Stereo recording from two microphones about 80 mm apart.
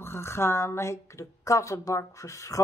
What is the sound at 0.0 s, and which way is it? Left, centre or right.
Speech, left.